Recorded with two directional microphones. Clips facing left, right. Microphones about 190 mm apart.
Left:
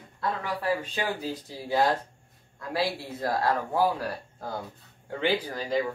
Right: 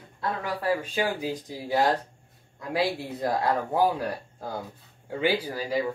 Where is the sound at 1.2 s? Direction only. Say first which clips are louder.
Right 3 dB; 15° right (ahead or behind).